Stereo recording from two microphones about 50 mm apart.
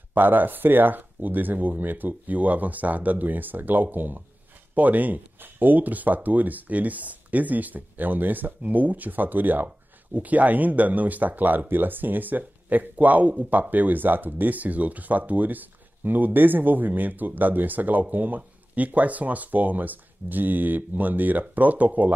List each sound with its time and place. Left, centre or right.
0.1 s speech: right